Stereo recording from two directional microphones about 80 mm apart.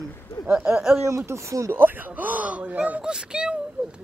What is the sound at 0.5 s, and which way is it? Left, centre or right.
Speech, centre.